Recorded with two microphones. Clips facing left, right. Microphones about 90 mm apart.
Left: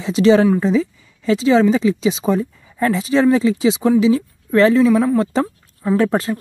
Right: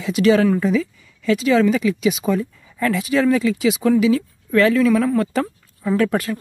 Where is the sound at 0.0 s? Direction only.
25° left (ahead or behind).